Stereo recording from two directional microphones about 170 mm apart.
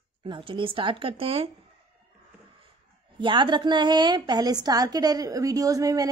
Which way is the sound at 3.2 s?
25° right (ahead or behind).